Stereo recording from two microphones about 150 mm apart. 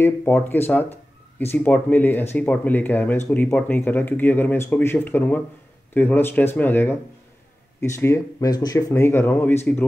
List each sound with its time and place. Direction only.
0.0 s speech: 10° left (ahead or behind)